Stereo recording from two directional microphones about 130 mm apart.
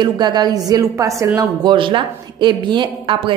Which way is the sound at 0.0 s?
30° right (ahead or behind).